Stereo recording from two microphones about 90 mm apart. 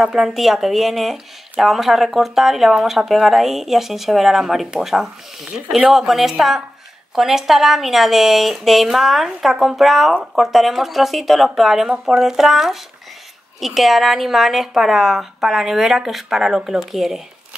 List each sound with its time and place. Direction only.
0.0 s speech: 5° right (ahead or behind)